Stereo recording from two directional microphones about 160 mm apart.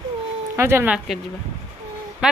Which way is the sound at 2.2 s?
5° right (ahead or behind).